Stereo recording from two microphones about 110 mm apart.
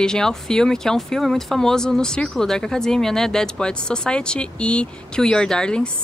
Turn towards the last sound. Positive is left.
turn(degrees=5)  # may be behind; listen again after turning